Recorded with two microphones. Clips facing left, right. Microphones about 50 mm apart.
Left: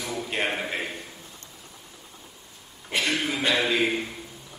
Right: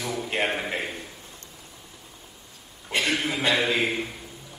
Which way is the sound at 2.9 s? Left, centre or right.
Centre.